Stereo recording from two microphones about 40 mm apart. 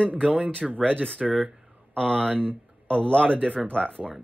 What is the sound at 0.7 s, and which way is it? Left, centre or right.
A man's voice, left.